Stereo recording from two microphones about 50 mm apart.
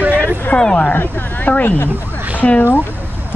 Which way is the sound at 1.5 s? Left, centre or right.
Left.